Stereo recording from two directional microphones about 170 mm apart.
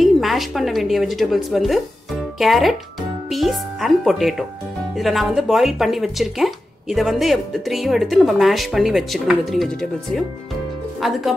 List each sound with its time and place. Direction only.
0.0 s speech: centre (ahead or behind)